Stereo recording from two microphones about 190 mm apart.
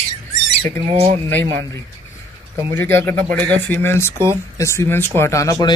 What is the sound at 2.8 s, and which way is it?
Speech, 10° left (ahead or behind).